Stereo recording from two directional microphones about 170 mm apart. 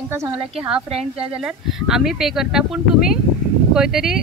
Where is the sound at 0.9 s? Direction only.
35° right (ahead or behind).